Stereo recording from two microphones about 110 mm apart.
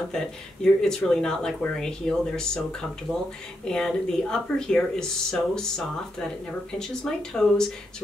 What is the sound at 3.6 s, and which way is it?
Speech, 5° left (ahead or behind).